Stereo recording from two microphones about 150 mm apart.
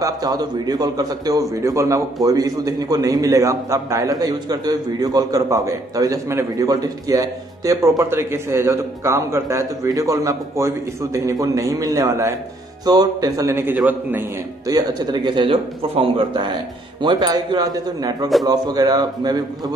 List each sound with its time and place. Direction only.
0.0 s a man's voice: 25° right (ahead or behind)
14.7 s a man's voice: 25° right (ahead or behind)